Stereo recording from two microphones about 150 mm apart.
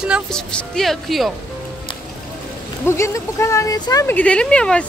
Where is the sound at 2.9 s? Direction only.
20° left (ahead or behind).